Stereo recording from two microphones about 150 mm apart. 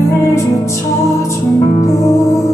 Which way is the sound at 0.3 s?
20° left (ahead or behind).